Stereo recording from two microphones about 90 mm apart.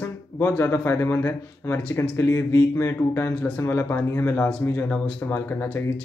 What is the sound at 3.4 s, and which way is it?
Speech, 20° left (ahead or behind).